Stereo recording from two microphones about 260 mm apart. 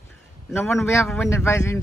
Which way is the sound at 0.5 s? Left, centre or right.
Centre.